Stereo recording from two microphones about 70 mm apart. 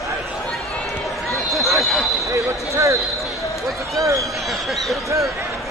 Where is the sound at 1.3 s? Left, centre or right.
Centre.